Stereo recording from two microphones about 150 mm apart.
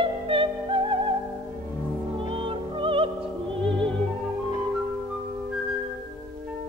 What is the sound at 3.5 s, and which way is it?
Opera, 35° right (ahead or behind).